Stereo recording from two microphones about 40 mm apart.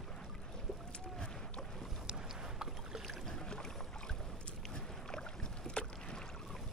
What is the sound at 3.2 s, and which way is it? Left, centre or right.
Boat, centre.